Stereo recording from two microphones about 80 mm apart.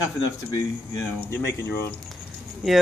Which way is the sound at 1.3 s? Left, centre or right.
Left.